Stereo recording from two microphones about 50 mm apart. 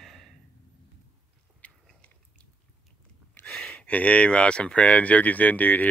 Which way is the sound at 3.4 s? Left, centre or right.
Centre.